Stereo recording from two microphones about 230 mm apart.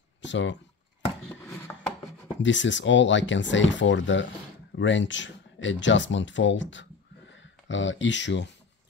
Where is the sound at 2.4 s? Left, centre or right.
Left.